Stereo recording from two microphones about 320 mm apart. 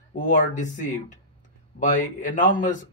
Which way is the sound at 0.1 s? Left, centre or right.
Left.